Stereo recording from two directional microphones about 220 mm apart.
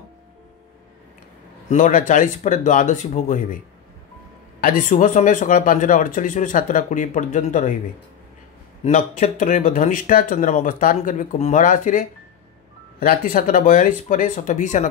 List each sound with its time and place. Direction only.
1.7 s speech: 35° left (ahead or behind)
4.6 s speech: 40° left (ahead or behind)
8.8 s speech: 30° left (ahead or behind)